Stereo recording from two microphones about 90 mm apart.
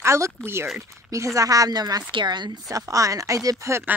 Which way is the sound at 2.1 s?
60° right (ahead or behind).